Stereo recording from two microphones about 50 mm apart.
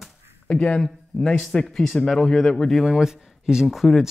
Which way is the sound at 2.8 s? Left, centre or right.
Centre.